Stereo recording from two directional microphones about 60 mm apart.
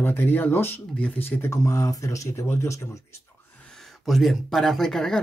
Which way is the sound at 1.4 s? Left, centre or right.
Left.